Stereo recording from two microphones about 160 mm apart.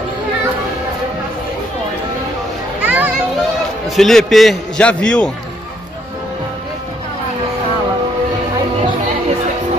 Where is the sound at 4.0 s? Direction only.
Centre (ahead or behind).